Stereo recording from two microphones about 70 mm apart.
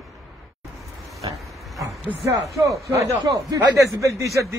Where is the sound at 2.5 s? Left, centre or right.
Right.